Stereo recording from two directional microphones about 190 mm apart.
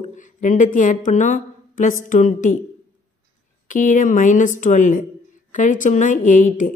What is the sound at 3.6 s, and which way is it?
A woman's voice, 40° left (ahead or behind).